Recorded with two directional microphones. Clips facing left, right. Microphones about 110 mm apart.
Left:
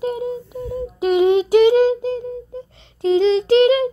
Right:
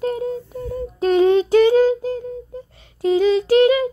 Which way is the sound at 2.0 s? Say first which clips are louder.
Left 1 dB; 25° left (ahead or behind).